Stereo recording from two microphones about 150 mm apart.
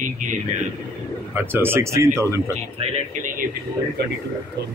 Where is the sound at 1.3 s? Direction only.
15° right (ahead or behind).